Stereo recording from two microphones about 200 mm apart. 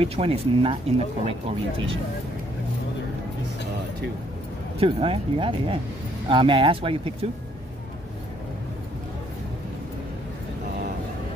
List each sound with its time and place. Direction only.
0.0 s speech: 30° right (ahead or behind)
4.7 s speech: 25° right (ahead or behind)